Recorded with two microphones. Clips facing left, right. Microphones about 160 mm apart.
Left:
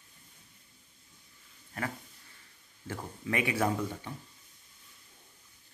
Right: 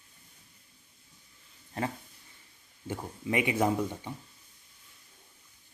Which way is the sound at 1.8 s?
30° right (ahead or behind).